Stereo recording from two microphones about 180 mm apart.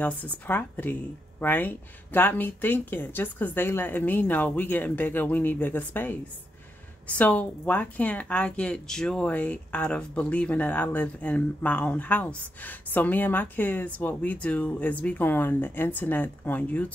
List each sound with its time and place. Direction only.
0.0 s speech: 10° left (ahead or behind)